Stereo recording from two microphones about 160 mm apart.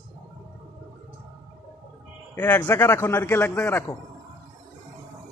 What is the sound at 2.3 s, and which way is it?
A man's voice, 10° left (ahead or behind).